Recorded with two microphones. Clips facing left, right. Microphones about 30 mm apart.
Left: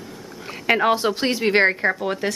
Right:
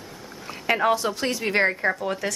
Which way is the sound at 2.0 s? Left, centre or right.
Left.